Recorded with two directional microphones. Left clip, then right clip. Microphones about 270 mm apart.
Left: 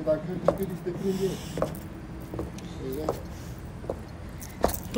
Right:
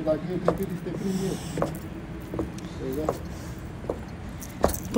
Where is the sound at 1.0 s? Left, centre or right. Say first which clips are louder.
Left 3 dB; right.